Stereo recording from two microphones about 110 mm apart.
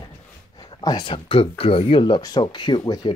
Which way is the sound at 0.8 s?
45° left (ahead or behind).